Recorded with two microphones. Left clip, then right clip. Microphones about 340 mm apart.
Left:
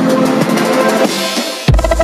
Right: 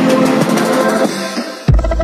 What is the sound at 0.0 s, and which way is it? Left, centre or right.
Music, centre.